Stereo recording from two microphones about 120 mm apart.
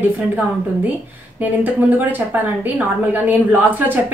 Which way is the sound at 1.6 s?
15° right (ahead or behind).